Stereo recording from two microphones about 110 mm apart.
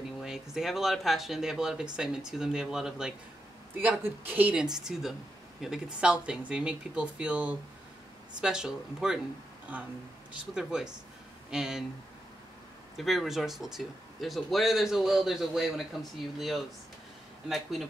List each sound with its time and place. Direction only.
0.2 s speech: 5° right (ahead or behind)
3.8 s speech: 15° right (ahead or behind)
4.7 s speech: 5° right (ahead or behind)
10.3 s speech: 5° right (ahead or behind)
12.9 s speech: centre (ahead or behind)